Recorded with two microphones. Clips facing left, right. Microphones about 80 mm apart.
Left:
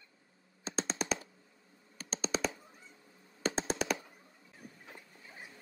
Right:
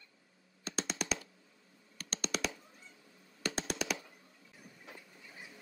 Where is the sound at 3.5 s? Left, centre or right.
Centre.